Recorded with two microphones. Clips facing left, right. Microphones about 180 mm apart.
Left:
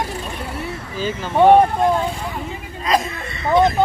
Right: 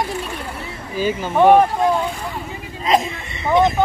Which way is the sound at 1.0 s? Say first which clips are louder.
Right 4 dB; 10° right (ahead or behind).